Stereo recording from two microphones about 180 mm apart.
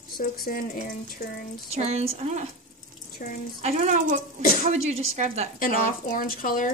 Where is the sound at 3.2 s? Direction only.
50° left (ahead or behind).